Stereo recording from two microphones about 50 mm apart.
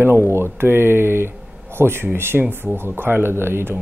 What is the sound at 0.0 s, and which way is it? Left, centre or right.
Speech, right.